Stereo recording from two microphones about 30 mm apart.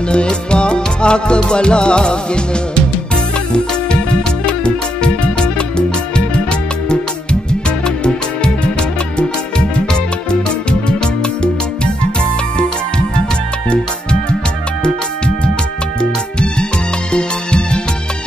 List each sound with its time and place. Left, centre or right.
0.1 s music: left
4.6 s music: left
16.0 s music: left